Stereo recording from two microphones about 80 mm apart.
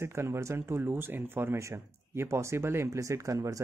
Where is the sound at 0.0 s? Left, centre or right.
Right.